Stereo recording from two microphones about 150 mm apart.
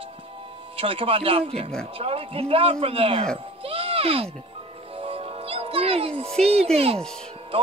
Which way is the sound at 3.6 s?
40° right (ahead or behind).